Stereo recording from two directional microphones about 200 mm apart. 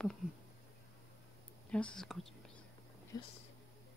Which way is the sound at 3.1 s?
15° left (ahead or behind).